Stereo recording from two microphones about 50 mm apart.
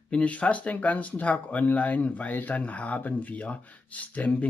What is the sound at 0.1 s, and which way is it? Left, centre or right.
Speech, left.